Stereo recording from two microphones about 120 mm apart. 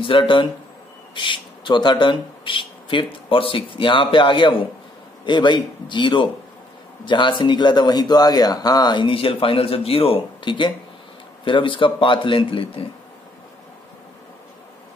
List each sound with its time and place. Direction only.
0.0 s speech: 45° left (ahead or behind)